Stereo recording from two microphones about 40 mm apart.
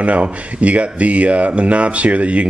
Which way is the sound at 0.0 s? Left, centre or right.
Right.